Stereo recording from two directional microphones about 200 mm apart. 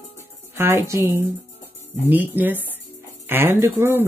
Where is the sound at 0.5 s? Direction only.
10° right (ahead or behind).